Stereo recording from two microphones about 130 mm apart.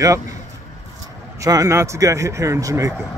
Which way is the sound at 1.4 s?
25° right (ahead or behind).